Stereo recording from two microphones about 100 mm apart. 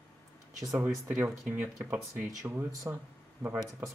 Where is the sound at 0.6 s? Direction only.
35° right (ahead or behind).